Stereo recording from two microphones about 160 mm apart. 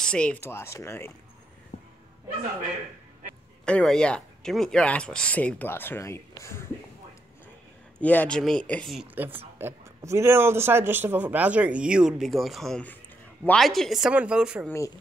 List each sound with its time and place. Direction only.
0.0 s speech: 5° left (ahead or behind)
1.7 s a sound: 50° left (ahead or behind)
3.6 s speech: 5° left (ahead or behind)
8.0 s speech: 10° left (ahead or behind)